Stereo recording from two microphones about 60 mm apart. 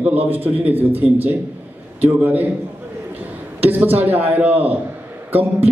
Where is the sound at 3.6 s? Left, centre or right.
Right.